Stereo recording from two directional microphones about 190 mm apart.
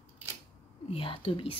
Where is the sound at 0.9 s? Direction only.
30° left (ahead or behind).